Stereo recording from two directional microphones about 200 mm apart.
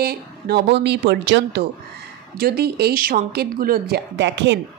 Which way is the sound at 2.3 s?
50° right (ahead or behind).